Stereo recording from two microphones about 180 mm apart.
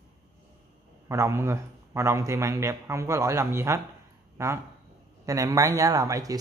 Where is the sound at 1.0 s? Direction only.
15° right (ahead or behind).